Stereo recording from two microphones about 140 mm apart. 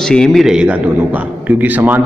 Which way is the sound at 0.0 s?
5° left (ahead or behind).